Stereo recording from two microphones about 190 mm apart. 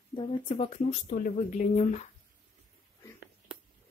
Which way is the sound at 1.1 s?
40° left (ahead or behind).